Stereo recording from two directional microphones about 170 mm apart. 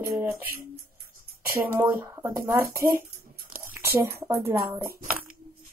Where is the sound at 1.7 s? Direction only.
15° right (ahead or behind).